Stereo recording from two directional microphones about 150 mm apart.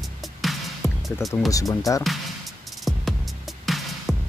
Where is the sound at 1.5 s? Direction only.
20° left (ahead or behind).